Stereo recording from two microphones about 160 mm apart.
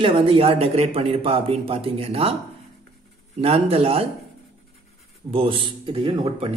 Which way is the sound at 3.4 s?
40° right (ahead or behind).